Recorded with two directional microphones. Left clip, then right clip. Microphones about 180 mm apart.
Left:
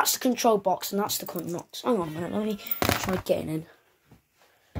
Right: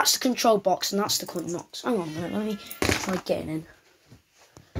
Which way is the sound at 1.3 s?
15° left (ahead or behind).